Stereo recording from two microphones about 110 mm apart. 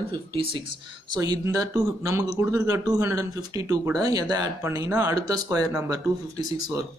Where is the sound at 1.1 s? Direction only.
40° right (ahead or behind).